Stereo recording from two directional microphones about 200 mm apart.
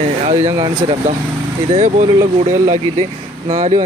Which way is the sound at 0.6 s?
30° right (ahead or behind).